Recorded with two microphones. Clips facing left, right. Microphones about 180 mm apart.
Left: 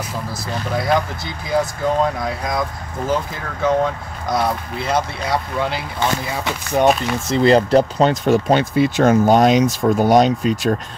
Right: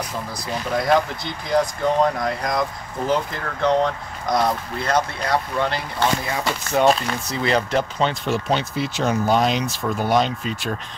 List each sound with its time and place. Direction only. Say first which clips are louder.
0.7 s speech: even; centre (ahead or behind)
7.2 s speech: left 9 dB; 30° left (ahead or behind)